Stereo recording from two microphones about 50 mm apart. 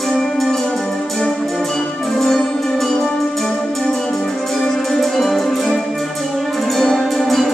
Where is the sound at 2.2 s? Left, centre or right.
Centre.